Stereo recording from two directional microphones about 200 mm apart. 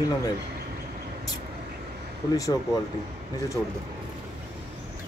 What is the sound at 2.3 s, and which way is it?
Speech, 15° left (ahead or behind).